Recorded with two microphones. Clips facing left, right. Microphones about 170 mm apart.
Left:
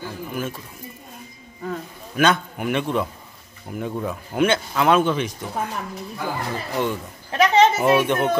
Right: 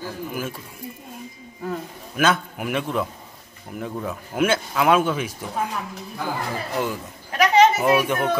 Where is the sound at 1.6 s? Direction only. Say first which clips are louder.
Even; 5° right (ahead or behind).